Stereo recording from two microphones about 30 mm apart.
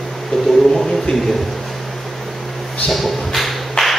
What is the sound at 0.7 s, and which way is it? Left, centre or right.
Speech, centre.